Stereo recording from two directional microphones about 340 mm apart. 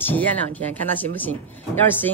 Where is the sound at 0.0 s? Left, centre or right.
Centre.